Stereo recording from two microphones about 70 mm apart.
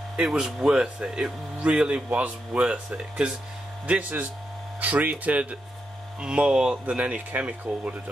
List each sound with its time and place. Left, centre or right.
0.1 s speech: centre